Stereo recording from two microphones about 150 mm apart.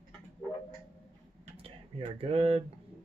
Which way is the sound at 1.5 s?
40° right (ahead or behind).